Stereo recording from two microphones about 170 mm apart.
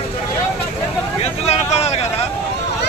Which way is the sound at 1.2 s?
40° left (ahead or behind).